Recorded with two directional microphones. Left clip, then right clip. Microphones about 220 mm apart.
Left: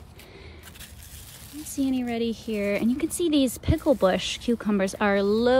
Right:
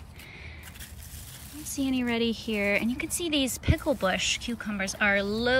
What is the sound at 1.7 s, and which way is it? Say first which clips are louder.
Speech: left 1 dB; 10° left (ahead or behind).